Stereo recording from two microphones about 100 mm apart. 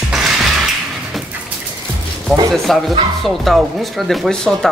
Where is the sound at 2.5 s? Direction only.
Centre (ahead or behind).